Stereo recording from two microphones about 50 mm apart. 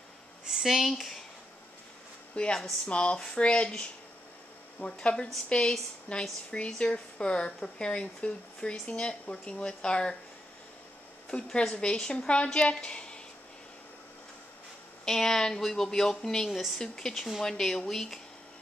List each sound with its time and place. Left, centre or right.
0.5 s speech: centre
2.3 s a woman's voice: centre
11.6 s a woman's voice: centre
15.0 s speech: centre